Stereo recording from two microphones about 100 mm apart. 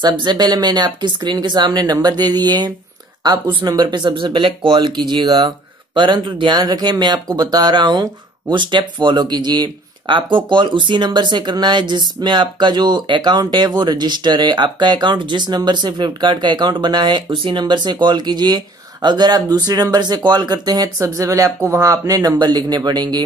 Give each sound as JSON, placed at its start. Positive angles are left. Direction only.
{"t": 0.0, "sound": "speech", "side_deg": -50}